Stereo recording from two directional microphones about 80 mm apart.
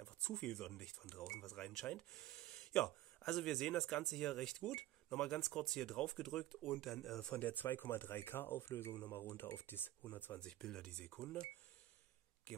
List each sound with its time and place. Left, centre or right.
0.0 s speech: centre
6.5 s speech: centre
7.2 s speech: left
10.4 s speech: centre